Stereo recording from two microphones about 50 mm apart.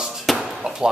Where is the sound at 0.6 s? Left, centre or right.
Centre.